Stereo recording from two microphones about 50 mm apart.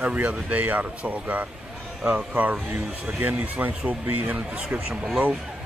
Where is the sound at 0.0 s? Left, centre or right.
Right.